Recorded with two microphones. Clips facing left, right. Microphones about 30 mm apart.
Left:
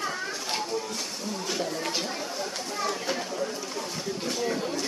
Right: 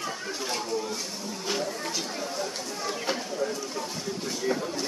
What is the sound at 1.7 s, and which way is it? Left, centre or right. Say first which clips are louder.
Speech: left 2 dB; left.